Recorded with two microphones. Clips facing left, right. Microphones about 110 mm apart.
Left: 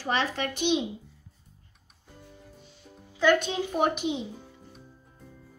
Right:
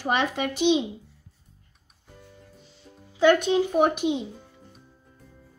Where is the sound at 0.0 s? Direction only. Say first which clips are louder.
Right 3 dB; 15° right (ahead or behind).